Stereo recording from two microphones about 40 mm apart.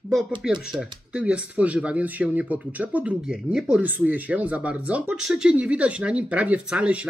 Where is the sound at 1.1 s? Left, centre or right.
Right.